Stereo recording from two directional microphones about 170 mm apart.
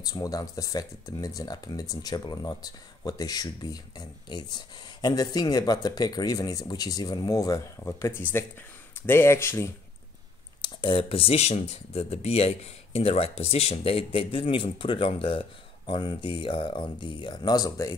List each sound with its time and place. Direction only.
0.0 s speech: 20° left (ahead or behind)
10.6 s speech: 30° left (ahead or behind)